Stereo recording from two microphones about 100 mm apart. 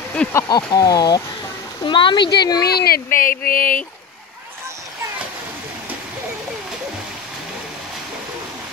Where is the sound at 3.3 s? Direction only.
15° left (ahead or behind).